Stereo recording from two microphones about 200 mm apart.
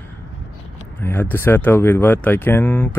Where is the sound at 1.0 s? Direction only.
10° left (ahead or behind).